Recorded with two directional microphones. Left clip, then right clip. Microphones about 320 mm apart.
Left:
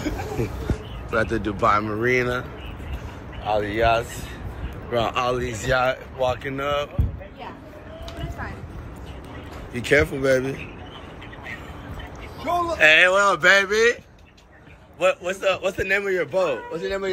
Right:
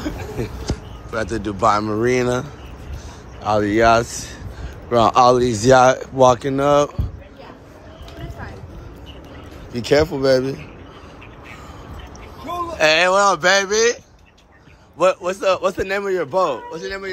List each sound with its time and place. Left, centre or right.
1.1 s speech: centre
3.4 s speech: right
9.8 s speech: centre
12.8 s speech: centre
15.0 s speech: centre
16.8 s speech: centre